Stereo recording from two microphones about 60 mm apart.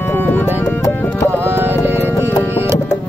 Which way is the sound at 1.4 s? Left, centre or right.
Right.